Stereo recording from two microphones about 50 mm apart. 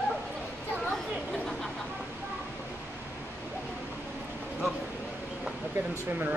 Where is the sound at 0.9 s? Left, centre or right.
Centre.